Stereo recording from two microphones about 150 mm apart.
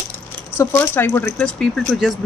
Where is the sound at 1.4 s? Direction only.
Centre (ahead or behind).